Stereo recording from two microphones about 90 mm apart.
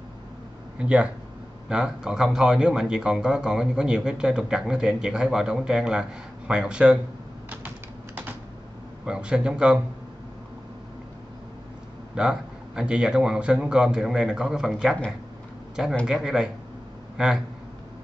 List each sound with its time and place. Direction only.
0.7 s speech: 15° right (ahead or behind)
7.4 s typing: 20° right (ahead or behind)
9.0 s speech: 10° right (ahead or behind)
12.2 s a man's voice: 10° right (ahead or behind)